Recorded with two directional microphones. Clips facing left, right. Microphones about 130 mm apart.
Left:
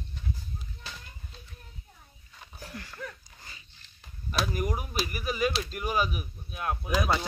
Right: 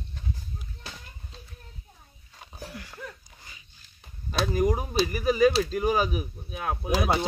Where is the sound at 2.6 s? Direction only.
10° right (ahead or behind).